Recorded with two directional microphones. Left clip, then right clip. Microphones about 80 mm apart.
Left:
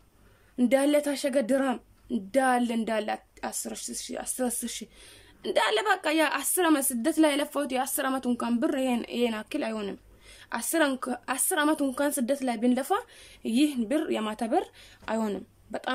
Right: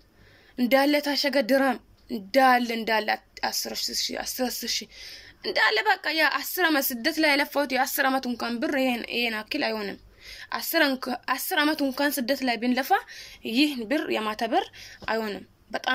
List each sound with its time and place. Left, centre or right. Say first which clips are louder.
0.6 s a woman's voice: right 2 dB; left
15.1 s speech: left 1 dB; left